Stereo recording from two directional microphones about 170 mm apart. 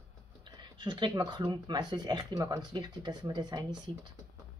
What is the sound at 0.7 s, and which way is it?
Speech, 25° right (ahead or behind).